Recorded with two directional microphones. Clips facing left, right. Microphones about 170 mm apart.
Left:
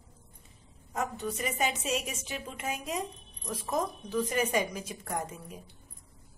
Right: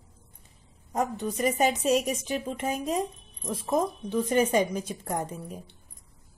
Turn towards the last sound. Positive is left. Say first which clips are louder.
# right 4 dB
turn(degrees=-35)  # may be behind; listen again after turning